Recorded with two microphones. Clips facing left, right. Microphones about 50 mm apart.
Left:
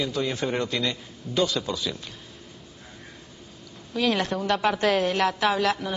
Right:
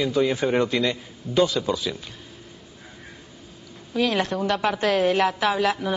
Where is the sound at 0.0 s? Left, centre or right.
Centre.